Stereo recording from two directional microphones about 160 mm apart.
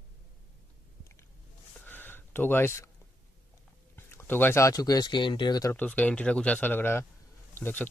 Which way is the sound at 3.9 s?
15° left (ahead or behind).